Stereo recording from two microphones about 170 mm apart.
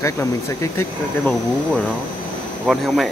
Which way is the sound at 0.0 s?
15° left (ahead or behind).